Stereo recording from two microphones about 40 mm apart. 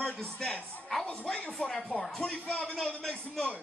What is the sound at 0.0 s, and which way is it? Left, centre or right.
A man's voice, centre.